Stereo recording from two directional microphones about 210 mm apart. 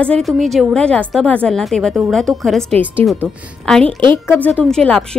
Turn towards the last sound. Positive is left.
turn(degrees=5)  # may be behind; listen again after turning